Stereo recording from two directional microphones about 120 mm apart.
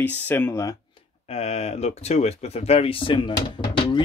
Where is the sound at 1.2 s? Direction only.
60° left (ahead or behind); by 3.9 s 45° left (ahead or behind).